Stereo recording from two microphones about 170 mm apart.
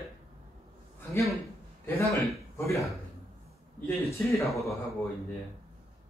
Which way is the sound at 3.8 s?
15° left (ahead or behind).